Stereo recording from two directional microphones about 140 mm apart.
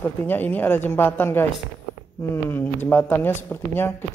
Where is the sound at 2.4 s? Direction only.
15° left (ahead or behind).